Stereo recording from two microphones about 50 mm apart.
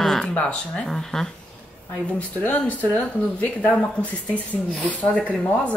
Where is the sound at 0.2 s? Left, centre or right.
Centre.